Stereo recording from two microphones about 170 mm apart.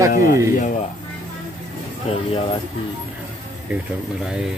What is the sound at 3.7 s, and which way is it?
Speech, 5° right (ahead or behind).